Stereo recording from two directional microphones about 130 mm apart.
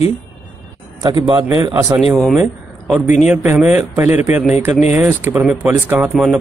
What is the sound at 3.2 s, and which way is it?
A man's voice, 15° right (ahead or behind).